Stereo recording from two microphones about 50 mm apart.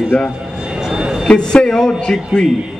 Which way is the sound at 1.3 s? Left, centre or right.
Centre.